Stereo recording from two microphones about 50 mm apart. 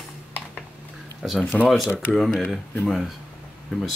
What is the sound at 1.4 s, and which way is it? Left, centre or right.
Speech, left.